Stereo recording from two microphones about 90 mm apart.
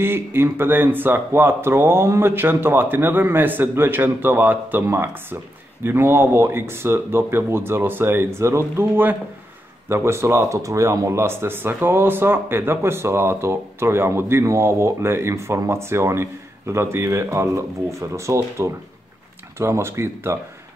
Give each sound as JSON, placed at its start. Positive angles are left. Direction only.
{"t": 0.0, "sound": "speech", "side_deg": -25}